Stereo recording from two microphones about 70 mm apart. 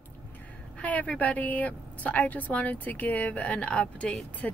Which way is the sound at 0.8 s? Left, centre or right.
Centre.